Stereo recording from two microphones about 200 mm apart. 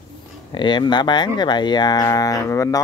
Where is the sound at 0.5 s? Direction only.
20° left (ahead or behind).